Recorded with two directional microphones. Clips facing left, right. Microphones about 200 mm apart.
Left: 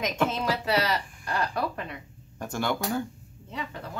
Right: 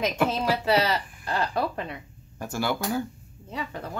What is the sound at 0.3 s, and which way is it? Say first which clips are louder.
Speech: right 3 dB; 30° right (ahead or behind).